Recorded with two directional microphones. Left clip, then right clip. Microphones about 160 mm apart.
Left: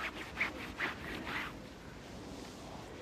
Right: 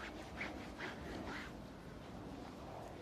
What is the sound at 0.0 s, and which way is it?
Sawing, 45° left (ahead or behind).